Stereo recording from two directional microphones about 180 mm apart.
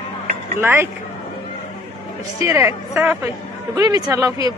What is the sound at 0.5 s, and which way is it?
Speech, 10° right (ahead or behind).